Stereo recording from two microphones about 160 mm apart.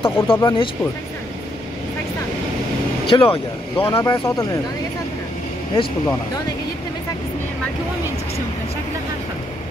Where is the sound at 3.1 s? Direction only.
35° left (ahead or behind).